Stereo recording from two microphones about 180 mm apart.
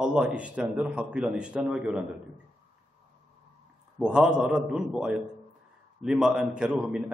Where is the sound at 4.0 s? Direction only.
5° right (ahead or behind).